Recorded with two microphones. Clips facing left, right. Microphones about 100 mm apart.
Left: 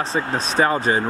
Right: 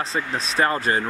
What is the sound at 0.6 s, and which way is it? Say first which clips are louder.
Speech: left 2 dB; 5° left (ahead or behind).